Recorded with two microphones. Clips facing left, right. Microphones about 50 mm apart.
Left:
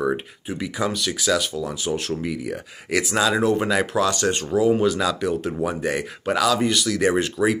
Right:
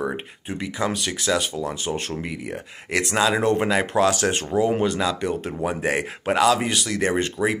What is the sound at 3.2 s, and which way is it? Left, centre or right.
Speech, centre.